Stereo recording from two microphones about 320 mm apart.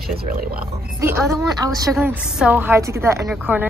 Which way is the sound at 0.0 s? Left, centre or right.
Right.